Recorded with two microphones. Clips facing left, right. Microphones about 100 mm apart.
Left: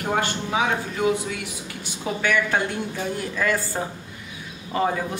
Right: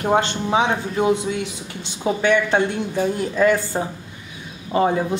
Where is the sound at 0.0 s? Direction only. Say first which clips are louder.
Right 5 dB; 25° right (ahead or behind).